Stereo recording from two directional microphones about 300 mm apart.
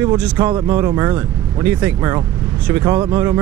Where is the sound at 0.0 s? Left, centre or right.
Centre.